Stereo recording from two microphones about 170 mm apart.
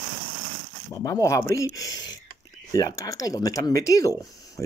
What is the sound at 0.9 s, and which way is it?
Speech, 20° left (ahead or behind).